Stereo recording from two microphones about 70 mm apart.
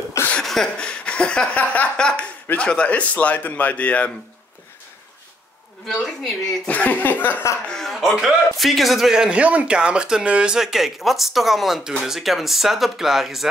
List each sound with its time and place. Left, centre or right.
0.3 s speech: centre
5.9 s speech: centre
6.7 s speech: left
7.6 s speech: centre
9.4 s speech: centre